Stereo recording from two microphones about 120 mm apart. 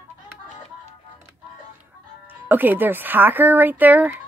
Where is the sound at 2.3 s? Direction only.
15° right (ahead or behind).